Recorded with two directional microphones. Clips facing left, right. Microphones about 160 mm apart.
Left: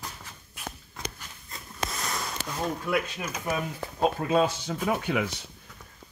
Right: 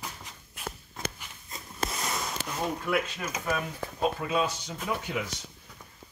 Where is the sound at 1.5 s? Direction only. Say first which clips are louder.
Even; 15° right (ahead or behind).